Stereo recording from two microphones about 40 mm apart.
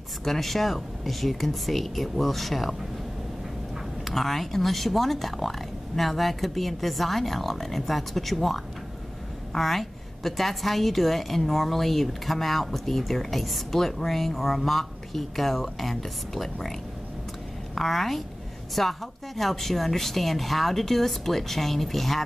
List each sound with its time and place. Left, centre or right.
0.2 s a woman's voice: centre
4.0 s a woman's voice: centre
17.7 s a woman's voice: centre